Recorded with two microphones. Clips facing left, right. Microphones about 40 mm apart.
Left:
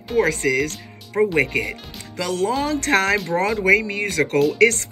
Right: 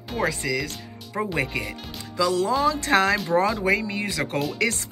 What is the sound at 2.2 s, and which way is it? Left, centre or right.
Speech, left.